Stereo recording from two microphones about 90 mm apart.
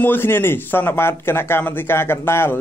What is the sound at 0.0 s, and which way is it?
Speech, 25° left (ahead or behind).